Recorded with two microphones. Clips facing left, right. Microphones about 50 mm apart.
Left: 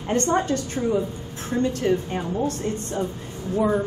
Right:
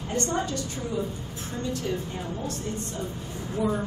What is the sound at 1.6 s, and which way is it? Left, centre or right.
Speech, left.